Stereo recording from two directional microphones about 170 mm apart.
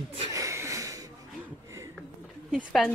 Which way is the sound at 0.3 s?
20° right (ahead or behind).